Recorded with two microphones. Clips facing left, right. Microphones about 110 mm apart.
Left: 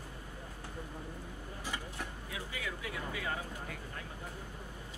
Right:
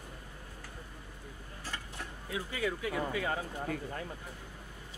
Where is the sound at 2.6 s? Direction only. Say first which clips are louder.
Right 9 dB; 35° right (ahead or behind).